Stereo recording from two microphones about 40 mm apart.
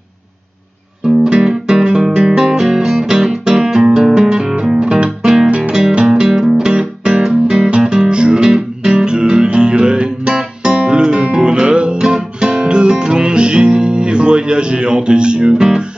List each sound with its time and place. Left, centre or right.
1.0 s music: centre
2.1 s guitar: centre
4.7 s guitar: right
5.7 s music: centre
7.8 s guitar: centre